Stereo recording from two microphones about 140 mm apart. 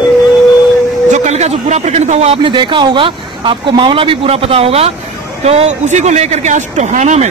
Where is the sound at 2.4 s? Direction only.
35° right (ahead or behind).